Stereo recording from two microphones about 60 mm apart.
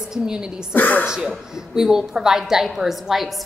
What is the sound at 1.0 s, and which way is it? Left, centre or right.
A woman's voice, centre.